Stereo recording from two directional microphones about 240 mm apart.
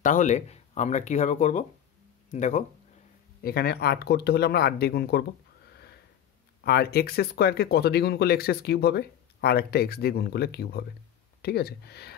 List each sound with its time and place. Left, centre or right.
0.0 s speech: left
3.4 s speech: left
6.6 s speech: left